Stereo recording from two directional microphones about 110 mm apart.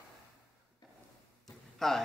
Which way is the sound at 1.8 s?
5° left (ahead or behind).